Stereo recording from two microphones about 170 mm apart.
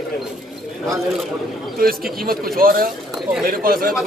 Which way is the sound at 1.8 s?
60° right (ahead or behind).